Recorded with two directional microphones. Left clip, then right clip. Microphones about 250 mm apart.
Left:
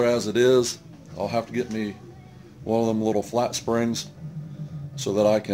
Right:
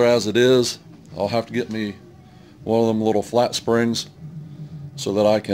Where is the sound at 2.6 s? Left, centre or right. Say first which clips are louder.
Right 4 dB; right.